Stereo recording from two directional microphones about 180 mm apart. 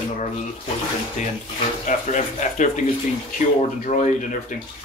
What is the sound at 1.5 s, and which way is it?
Speech, 40° left (ahead or behind).